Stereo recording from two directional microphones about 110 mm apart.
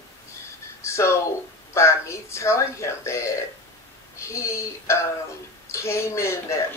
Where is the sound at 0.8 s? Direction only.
25° left (ahead or behind).